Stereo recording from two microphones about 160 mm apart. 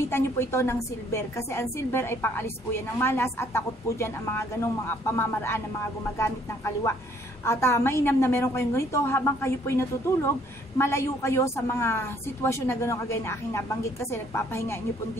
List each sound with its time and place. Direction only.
0.1 s a woman's voice: 15° left (ahead or behind)